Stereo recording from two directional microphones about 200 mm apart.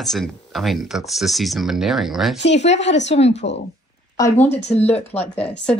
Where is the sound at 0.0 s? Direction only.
Centre (ahead or behind).